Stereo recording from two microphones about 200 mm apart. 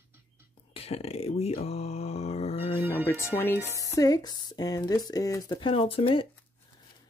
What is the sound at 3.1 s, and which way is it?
Speech, 15° left (ahead or behind).